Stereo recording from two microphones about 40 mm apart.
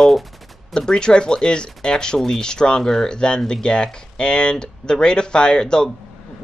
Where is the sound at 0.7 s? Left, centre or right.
Centre.